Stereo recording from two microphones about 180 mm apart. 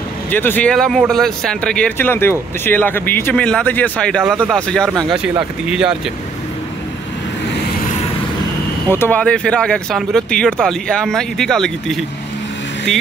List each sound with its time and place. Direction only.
0.3 s speech: 10° left (ahead or behind)
4.2 s speech: 5° right (ahead or behind)
8.8 s speech: 10° left (ahead or behind)